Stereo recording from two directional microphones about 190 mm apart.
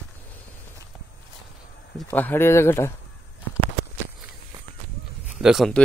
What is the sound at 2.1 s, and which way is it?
Speech, 10° left (ahead or behind).